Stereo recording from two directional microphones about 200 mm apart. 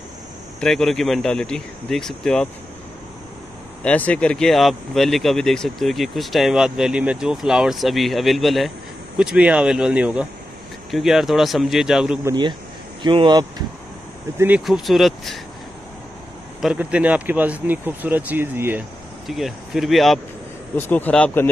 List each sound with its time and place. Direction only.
0.6 s speech: centre (ahead or behind)
3.8 s speech: 5° left (ahead or behind)
12.3 s speech: 25° right (ahead or behind)
14.4 s speech: 5° right (ahead or behind)
16.6 s speech: 5° right (ahead or behind)